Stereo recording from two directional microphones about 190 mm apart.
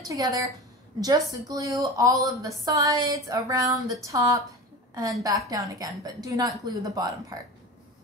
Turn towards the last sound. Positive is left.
turn(degrees=-20)  # may be behind; listen again after turning